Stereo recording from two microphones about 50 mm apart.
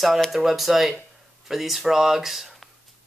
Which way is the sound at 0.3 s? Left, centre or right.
Centre.